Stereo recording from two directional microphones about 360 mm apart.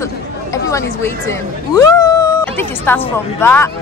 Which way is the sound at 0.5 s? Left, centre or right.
Centre.